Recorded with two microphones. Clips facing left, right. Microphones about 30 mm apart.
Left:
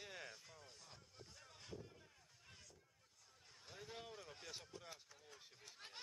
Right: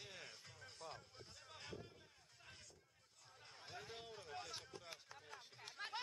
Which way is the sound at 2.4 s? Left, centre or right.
Right.